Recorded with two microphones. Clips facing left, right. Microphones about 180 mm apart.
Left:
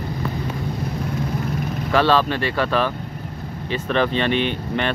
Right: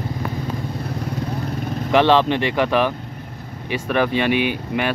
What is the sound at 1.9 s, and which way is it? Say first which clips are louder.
Speech: right 3 dB; 20° right (ahead or behind).